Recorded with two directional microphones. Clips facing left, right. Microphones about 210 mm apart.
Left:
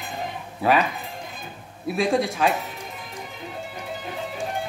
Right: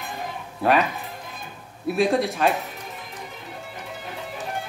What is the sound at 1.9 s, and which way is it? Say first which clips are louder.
Speech: right 1 dB; centre (ahead or behind).